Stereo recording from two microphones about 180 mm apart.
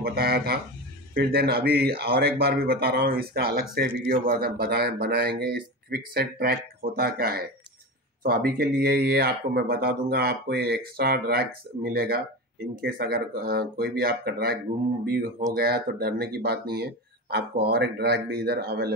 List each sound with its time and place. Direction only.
0.0 s speech: 60° right (ahead or behind)